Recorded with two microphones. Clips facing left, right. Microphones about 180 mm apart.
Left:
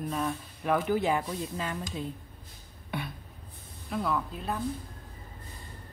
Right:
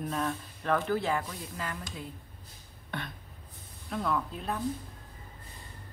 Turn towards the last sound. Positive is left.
turn(degrees=0)  # may be behind; listen again after turning